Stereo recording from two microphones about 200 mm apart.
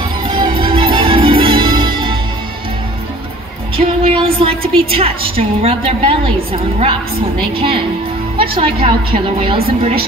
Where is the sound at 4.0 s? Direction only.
30° right (ahead or behind).